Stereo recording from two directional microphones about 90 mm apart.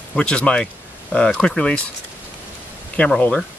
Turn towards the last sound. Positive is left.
turn(degrees=10)  # may be behind; listen again after turning